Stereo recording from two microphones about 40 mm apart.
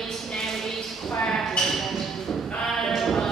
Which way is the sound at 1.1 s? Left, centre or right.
Centre.